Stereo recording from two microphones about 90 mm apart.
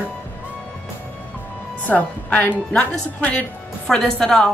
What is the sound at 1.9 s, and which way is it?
A woman's voice, 20° left (ahead or behind).